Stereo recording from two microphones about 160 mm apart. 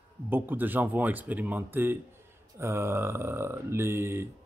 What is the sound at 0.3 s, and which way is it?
A man's voice, 10° right (ahead or behind).